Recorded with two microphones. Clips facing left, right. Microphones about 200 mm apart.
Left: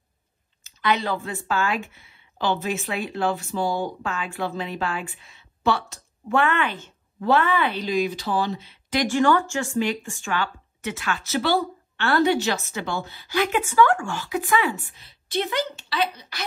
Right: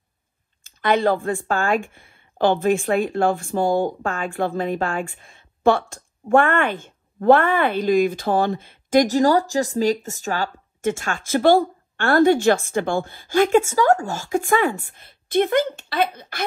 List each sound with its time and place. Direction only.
0.7 s speech: 50° right (ahead or behind)